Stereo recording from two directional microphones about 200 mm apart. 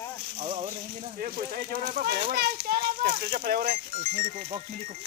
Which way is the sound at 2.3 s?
50° right (ahead or behind).